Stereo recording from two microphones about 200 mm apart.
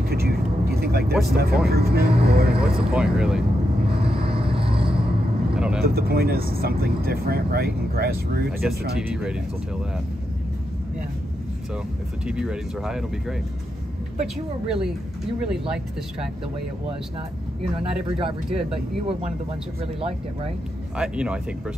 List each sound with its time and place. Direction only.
0.1 s vehicle: 50° right (ahead or behind)
1.2 s speech: 50° right (ahead or behind)
2.6 s speech: 5° right (ahead or behind)
4.2 s vehicle: 30° right (ahead or behind)
5.8 s speech: 50° right (ahead or behind)
8.6 s speech: centre (ahead or behind)
12.3 s speech: 5° right (ahead or behind)
14.7 s speech: 5° right (ahead or behind)
18.0 s speech: 25° right (ahead or behind)
21.0 s speech: 5° right (ahead or behind)